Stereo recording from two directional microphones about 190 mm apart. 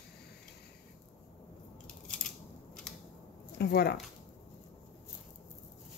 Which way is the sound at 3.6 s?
60° left (ahead or behind).